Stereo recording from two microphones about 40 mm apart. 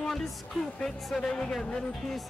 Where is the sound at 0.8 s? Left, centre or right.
Centre.